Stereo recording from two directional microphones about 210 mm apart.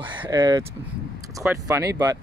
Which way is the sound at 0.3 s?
20° right (ahead or behind).